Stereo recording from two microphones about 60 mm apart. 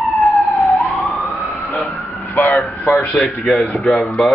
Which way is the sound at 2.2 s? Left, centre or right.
Left.